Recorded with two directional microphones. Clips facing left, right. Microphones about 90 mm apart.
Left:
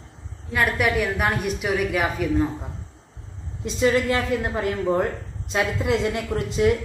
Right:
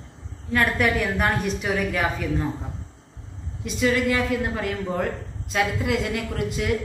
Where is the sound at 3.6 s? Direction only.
30° left (ahead or behind).